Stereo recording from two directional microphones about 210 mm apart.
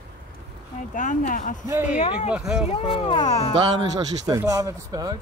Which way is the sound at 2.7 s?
25° left (ahead or behind).